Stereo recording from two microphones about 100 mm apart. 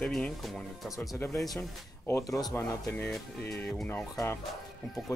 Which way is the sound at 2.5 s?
20° left (ahead or behind).